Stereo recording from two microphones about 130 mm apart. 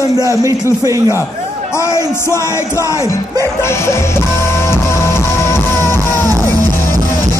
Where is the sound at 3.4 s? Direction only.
20° left (ahead or behind).